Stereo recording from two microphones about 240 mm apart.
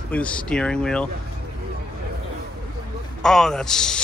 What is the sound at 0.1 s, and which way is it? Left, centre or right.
Speech, centre.